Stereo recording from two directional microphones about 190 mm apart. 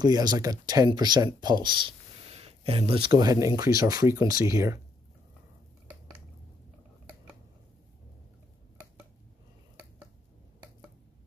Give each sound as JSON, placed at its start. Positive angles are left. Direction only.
{"t": 0.0, "sound": "speech", "side_deg": -20}